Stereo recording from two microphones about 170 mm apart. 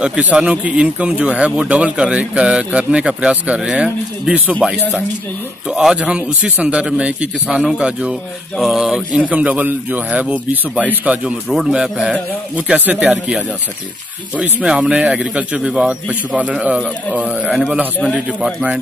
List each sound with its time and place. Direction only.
0.0 s speech: 5° right (ahead or behind)